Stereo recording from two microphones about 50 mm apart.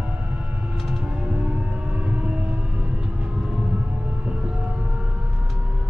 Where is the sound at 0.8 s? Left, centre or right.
Centre.